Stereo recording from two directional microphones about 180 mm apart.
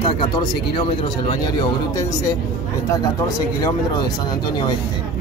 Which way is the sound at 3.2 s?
20° left (ahead or behind).